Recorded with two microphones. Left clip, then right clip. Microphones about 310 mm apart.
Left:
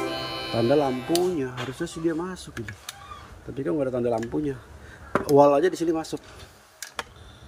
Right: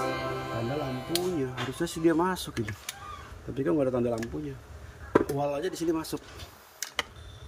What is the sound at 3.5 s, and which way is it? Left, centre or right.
Speech, centre.